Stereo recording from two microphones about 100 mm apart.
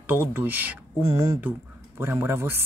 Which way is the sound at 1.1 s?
30° right (ahead or behind).